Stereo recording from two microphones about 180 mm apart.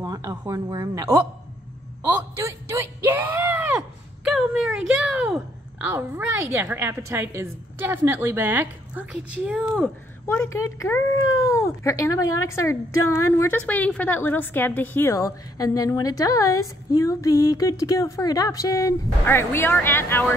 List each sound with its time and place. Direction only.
0.0 s speech: 20° right (ahead or behind)
2.0 s a sound: 15° right (ahead or behind)
5.9 s a woman's voice: 15° right (ahead or behind)
9.4 s speech: centre (ahead or behind)
10.2 s a woman's voice: 15° left (ahead or behind)